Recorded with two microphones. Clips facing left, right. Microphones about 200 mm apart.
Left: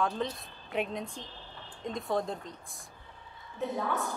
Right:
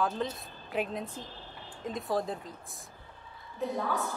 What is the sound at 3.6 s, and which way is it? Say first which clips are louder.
Speech: even; centre (ahead or behind).